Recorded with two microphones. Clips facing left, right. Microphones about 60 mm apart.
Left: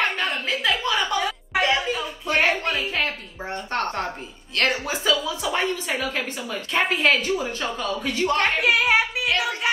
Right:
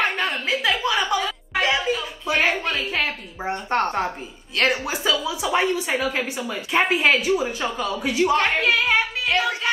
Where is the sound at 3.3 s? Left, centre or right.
Centre.